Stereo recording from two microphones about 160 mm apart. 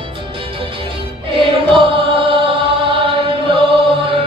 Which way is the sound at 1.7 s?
35° right (ahead or behind).